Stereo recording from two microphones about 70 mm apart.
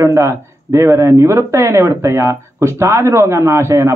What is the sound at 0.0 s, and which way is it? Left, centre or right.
Speech, right.